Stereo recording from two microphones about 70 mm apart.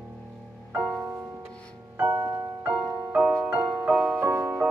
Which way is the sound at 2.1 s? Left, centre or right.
Right.